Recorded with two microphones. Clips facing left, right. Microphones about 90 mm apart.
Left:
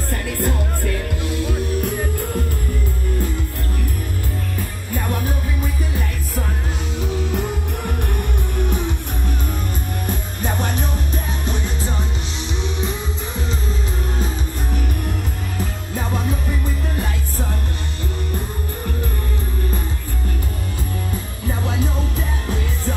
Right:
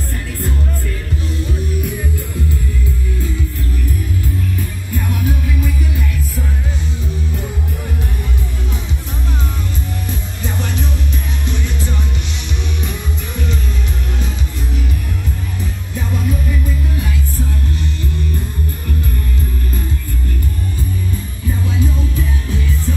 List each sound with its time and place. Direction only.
0.1 s music: 60° left (ahead or behind)
2.0 s music: 55° left (ahead or behind)
4.9 s music: 40° left (ahead or behind)
10.0 s music: 45° left (ahead or behind)
14.2 s music: 50° left (ahead or behind)
16.0 s music: 35° left (ahead or behind)
21.5 s music: 60° left (ahead or behind)